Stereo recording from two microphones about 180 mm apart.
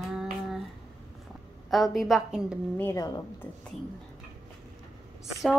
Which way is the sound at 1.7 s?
Centre (ahead or behind).